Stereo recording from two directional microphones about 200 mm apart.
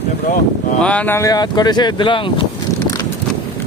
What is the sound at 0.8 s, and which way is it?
Speech, 5° left (ahead or behind).